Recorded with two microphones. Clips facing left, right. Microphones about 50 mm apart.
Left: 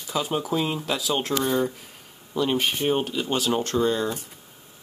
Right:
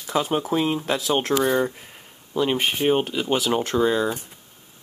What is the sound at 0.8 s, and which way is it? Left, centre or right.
Speech, right.